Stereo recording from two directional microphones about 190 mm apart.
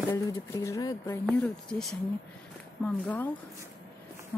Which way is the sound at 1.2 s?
Centre (ahead or behind).